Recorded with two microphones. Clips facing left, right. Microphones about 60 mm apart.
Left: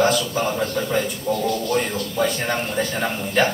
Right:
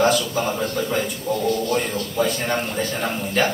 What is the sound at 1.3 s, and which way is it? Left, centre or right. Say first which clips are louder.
Speech: even; centre.